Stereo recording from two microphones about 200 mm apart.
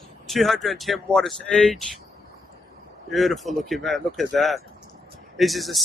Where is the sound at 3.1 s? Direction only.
Centre (ahead or behind).